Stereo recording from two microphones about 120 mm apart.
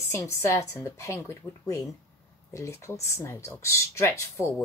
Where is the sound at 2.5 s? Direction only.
25° left (ahead or behind).